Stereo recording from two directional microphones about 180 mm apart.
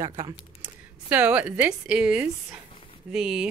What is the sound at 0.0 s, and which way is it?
Speech, 20° right (ahead or behind).